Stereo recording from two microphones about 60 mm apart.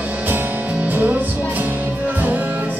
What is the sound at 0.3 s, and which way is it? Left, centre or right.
Music, right.